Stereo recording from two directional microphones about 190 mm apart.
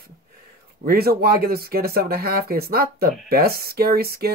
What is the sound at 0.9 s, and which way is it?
Speech, 55° right (ahead or behind).